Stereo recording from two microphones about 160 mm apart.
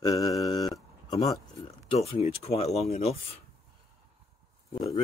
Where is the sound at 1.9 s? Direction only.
35° left (ahead or behind).